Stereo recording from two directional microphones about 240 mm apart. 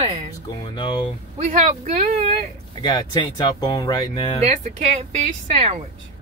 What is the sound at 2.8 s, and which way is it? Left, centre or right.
Speech, centre.